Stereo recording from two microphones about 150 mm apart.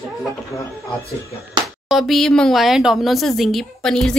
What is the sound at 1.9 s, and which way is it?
Speech, centre (ahead or behind).